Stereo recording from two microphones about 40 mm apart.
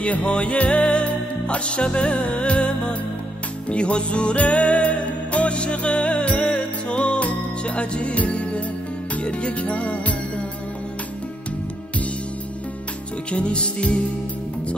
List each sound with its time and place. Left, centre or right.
0.0 s music: left
13.3 s music: left